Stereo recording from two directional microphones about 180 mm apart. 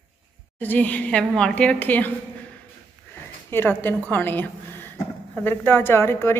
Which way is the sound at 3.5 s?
10° left (ahead or behind).